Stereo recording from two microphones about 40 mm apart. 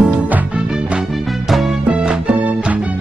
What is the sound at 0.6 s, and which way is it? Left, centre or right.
Music, right.